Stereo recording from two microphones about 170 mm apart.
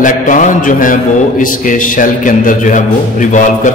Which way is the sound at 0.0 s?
50° left (ahead or behind).